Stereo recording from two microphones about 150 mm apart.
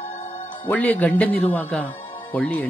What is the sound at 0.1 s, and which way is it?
Music, 45° left (ahead or behind).